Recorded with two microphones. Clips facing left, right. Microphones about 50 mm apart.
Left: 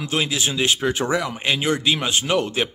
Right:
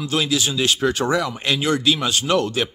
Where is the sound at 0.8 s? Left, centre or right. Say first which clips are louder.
Right 2 dB; centre.